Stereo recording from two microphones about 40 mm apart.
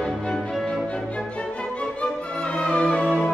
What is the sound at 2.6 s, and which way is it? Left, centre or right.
Music, left.